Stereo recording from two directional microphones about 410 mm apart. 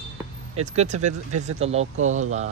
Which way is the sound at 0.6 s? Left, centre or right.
Centre.